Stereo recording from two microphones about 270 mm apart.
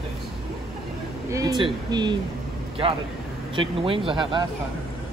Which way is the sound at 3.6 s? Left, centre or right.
Centre.